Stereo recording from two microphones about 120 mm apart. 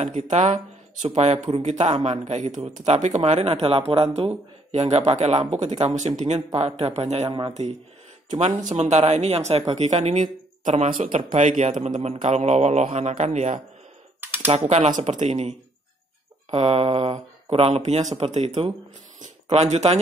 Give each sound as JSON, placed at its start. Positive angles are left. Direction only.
{"t": 0.0, "sound": "speech", "side_deg": -80}
{"t": 1.0, "sound": "speech", "side_deg": -65}
{"t": 4.7, "sound": "speech", "side_deg": -70}
{"t": 11.3, "sound": "speech", "side_deg": -90}
{"t": 14.2, "sound": "typing", "side_deg": -15}
{"t": 14.7, "sound": "speech", "side_deg": -75}
{"t": 16.5, "sound": "speech", "side_deg": -60}